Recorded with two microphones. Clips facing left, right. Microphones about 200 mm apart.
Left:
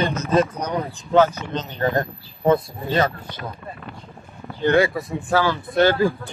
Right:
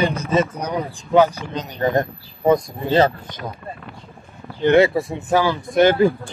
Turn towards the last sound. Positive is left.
turn(degrees=-20)  # may be behind; listen again after turning